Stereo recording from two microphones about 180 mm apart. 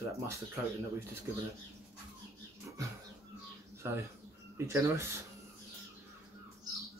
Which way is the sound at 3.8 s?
15° right (ahead or behind).